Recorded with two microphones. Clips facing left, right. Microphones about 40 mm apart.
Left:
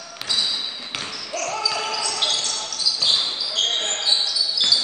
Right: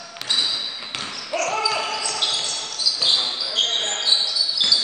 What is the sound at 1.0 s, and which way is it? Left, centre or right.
Basketball bounce, right.